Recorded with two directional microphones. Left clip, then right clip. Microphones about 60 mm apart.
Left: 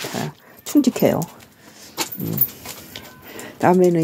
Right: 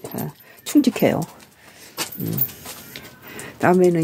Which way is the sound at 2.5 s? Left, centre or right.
Centre.